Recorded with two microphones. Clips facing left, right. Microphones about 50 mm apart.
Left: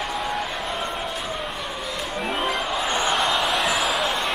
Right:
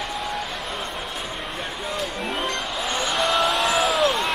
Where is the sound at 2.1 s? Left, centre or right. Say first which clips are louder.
Left 2 dB; centre.